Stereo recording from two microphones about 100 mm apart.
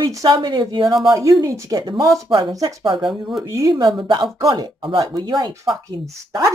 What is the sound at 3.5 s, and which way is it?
Speech, 30° right (ahead or behind).